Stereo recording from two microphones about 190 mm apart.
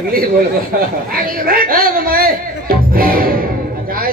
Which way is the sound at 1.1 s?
50° right (ahead or behind).